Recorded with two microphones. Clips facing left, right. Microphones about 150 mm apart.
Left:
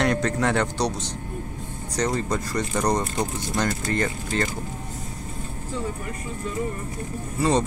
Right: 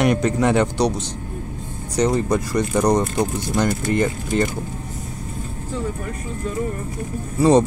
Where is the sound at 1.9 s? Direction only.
15° right (ahead or behind).